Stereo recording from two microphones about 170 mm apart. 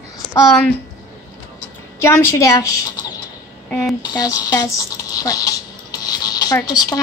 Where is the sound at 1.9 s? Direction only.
15° left (ahead or behind).